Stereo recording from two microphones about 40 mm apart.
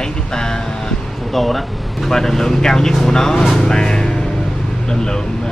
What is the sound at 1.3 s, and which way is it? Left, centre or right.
Speech, centre.